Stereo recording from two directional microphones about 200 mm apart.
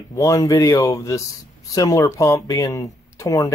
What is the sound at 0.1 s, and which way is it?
Speech, 15° left (ahead or behind).